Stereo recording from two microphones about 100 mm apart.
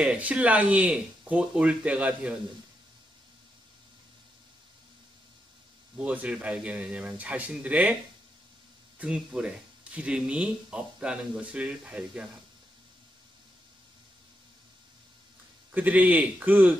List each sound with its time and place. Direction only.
0.0 s speech: 10° right (ahead or behind)
5.9 s speech: 15° right (ahead or behind)
9.0 s speech: 10° right (ahead or behind)
15.7 s speech: 15° right (ahead or behind)